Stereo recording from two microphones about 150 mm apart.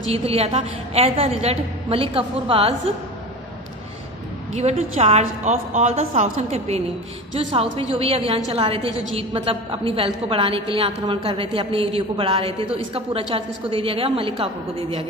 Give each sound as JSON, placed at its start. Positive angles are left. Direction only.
{"t": 0.1, "sound": "a woman's voice", "side_deg": -40}
{"t": 4.5, "sound": "a woman's voice", "side_deg": -50}